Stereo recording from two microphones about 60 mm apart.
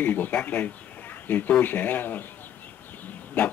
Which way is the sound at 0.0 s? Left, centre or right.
Left.